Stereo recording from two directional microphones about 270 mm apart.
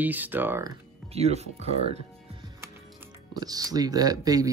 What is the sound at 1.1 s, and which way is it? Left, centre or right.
Speech, right.